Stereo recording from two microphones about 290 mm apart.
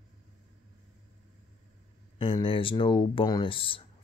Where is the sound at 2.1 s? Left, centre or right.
Centre.